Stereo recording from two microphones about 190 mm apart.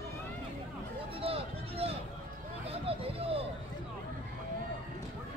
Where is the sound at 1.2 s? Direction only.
30° right (ahead or behind).